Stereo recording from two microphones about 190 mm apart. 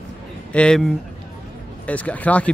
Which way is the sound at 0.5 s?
5° left (ahead or behind).